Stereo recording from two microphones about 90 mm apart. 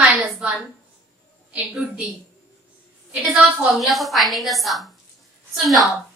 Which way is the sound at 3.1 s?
15° right (ahead or behind).